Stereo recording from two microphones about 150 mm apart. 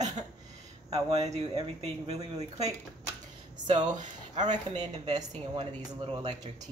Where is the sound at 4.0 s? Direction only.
50° right (ahead or behind).